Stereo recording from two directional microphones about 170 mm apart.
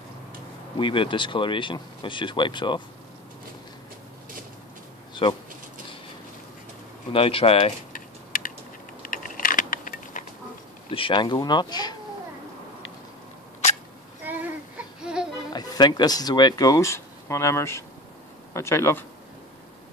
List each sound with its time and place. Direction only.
0.7 s speech: 30° left (ahead or behind)
5.2 s speech: 30° left (ahead or behind)
7.1 s speech: 30° left (ahead or behind)
7.9 s typing: 55° left (ahead or behind)
9.0 s a sound: 55° left (ahead or behind)
10.9 s speech: 30° left (ahead or behind)
14.2 s a sound: 10° right (ahead or behind)
15.5 s speech: 25° left (ahead or behind)